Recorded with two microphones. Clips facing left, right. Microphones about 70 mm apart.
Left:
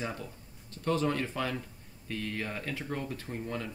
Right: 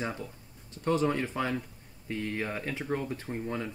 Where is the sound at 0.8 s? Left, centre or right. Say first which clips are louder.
Right 2 dB; centre.